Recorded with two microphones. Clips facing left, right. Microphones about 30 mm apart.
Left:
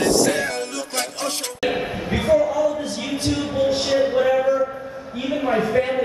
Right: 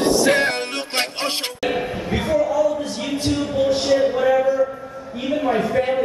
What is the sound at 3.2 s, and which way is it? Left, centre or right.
Music, centre.